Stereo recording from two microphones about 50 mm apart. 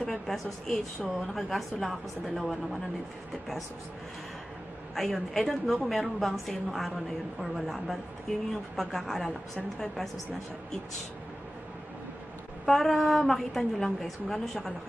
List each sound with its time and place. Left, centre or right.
0.0 s a woman's voice: centre
4.9 s a woman's voice: centre
12.6 s a woman's voice: centre